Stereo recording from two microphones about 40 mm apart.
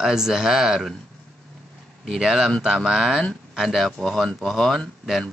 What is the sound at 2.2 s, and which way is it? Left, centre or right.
Speech, centre.